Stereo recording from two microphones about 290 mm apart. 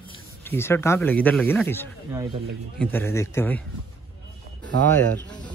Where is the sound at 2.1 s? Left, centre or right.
Centre.